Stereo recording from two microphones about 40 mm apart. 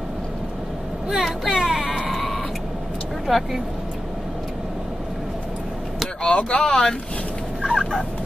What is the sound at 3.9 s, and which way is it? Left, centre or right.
Vehicle, centre.